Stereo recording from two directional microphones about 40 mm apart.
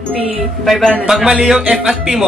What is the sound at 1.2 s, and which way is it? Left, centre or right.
A man's voice, centre.